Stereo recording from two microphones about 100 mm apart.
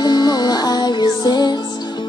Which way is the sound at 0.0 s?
45° left (ahead or behind).